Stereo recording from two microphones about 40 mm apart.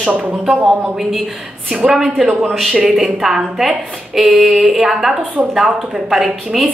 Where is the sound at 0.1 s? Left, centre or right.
Right.